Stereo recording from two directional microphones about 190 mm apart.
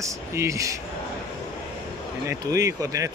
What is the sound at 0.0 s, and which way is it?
Speech, 15° right (ahead or behind).